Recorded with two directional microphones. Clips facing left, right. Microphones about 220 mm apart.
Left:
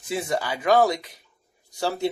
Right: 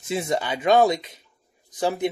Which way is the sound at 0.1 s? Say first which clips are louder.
Right 2 dB; 25° right (ahead or behind).